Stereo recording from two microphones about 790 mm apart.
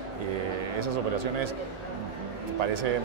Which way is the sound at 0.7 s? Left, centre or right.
Right.